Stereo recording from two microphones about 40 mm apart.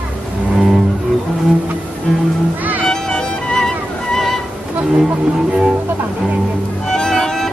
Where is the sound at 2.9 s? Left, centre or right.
Centre.